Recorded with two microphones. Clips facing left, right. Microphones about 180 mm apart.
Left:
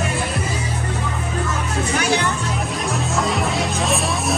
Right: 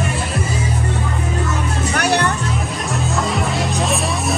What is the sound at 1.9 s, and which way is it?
Music, 65° right (ahead or behind).